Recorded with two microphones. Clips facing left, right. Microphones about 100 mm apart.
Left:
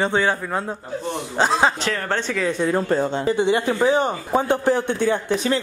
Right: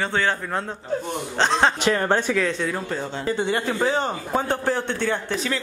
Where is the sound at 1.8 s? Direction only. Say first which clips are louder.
Right 3 dB; 15° right (ahead or behind).